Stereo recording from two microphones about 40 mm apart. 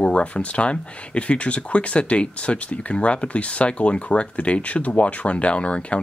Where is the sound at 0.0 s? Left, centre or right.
Left.